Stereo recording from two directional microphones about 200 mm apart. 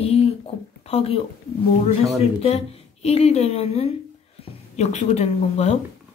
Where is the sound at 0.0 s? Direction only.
30° left (ahead or behind).